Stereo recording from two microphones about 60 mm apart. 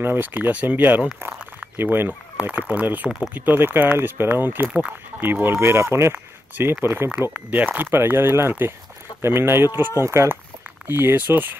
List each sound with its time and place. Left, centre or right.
0.0 s speech: right
2.3 s speech: right
10.9 s speech: right